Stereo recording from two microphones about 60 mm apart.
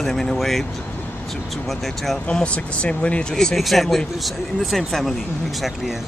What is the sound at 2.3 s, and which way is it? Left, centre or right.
Speech, centre.